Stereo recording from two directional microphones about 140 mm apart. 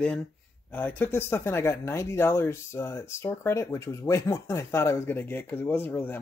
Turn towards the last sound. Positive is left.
turn(degrees=15)  # may be behind; listen again after turning